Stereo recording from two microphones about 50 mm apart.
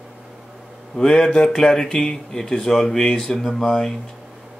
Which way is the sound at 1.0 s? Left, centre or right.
Centre.